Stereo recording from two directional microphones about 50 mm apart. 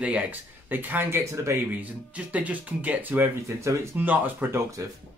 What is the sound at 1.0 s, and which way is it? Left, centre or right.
Speech, right.